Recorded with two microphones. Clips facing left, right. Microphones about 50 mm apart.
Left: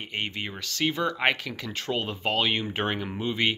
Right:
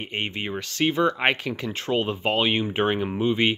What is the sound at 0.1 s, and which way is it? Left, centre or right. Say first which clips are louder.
Speech: right 3 dB; right.